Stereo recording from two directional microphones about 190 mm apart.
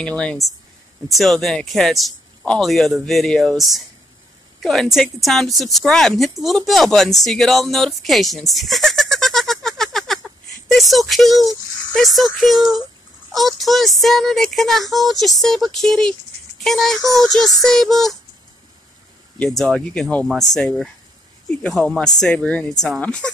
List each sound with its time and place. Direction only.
0.0 s a woman's voice: 5° left (ahead or behind)
8.5 s giggle: centre (ahead or behind)
13.3 s a woman's voice: centre (ahead or behind)
19.3 s a woman's voice: 5° left (ahead or behind)